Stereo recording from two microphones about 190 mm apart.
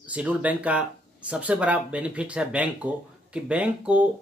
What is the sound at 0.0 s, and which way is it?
Speech, 5° right (ahead or behind).